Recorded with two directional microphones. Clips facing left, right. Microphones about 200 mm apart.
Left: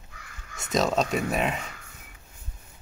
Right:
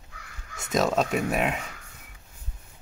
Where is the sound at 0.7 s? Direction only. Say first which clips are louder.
Even; 5° right (ahead or behind).